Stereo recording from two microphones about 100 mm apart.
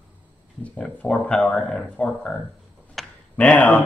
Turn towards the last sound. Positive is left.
turn(degrees=15)  # may be behind; listen again after turning